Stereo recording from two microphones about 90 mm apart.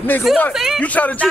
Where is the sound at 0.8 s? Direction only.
15° left (ahead or behind).